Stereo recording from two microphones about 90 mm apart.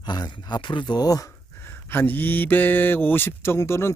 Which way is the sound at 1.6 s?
25° left (ahead or behind).